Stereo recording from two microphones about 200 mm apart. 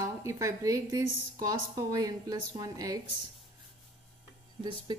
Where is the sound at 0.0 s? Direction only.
15° right (ahead or behind).